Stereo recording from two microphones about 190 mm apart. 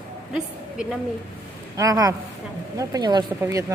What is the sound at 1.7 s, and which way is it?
Speech, 20° right (ahead or behind).